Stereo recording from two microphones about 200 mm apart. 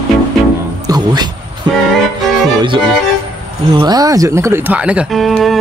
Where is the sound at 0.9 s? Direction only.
20° right (ahead or behind).